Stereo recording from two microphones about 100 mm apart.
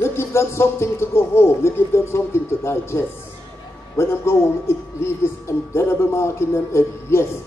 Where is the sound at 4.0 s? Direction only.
25° left (ahead or behind).